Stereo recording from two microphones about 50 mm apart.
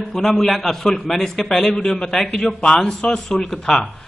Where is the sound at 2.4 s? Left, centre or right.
Centre.